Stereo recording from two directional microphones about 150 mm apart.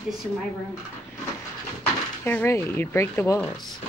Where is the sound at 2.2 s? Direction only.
15° left (ahead or behind).